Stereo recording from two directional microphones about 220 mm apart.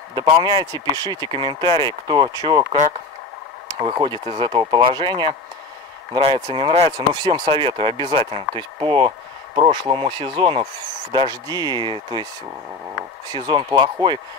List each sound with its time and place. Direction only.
0.1 s speech: 20° right (ahead or behind)
13.3 s speech: 20° right (ahead or behind)